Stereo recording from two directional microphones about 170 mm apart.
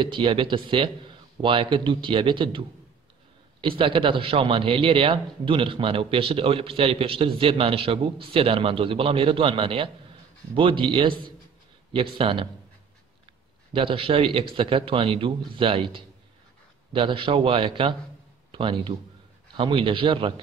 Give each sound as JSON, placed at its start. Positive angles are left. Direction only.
{"t": 0.0, "sound": "speech", "side_deg": -30}
{"t": 3.6, "sound": "a man's voice", "side_deg": -30}
{"t": 13.7, "sound": "a man's voice", "side_deg": -30}